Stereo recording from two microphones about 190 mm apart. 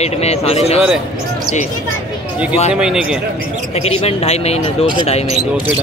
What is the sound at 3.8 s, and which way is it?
Speech, 30° left (ahead or behind).